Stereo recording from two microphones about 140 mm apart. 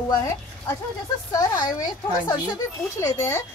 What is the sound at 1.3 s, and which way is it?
Speech, 25° left (ahead or behind).